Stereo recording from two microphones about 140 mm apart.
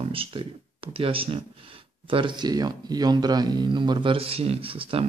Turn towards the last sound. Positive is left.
turn(degrees=-40)  # may be behind; listen again after turning